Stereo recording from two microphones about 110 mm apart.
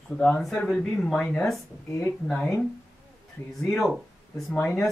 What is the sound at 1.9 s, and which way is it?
Speech, 25° left (ahead or behind).